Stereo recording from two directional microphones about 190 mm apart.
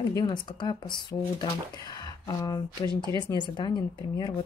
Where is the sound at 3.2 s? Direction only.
20° left (ahead or behind).